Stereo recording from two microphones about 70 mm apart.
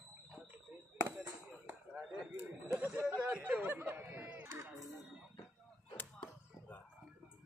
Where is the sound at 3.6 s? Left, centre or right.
Right.